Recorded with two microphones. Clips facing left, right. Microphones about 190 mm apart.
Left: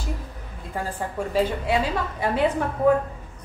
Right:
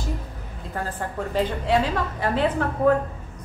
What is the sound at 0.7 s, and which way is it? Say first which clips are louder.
A woman's voice: left 1 dB; 10° left (ahead or behind).